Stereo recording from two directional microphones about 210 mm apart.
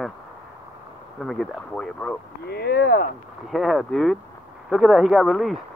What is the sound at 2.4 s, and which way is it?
Speech, 50° left (ahead or behind).